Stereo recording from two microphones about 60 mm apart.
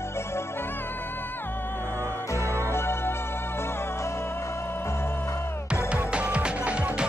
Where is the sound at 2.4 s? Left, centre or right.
Right.